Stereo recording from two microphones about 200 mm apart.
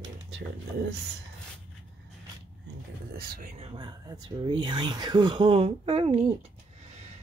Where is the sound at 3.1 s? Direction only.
45° right (ahead or behind).